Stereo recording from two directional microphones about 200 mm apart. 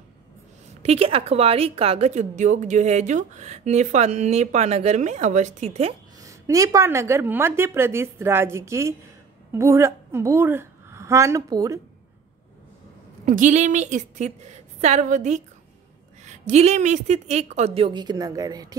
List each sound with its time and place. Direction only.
0.8 s a woman's voice: 30° right (ahead or behind)
6.2 s a woman's voice: 15° right (ahead or behind)
13.2 s a woman's voice: 40° right (ahead or behind); by 18.8 s 20° right (ahead or behind)